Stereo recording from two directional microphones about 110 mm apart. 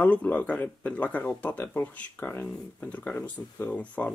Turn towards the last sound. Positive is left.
turn(degrees=15)  # may be behind; listen again after turning